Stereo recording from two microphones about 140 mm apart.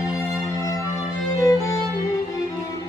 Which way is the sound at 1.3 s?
25° left (ahead or behind).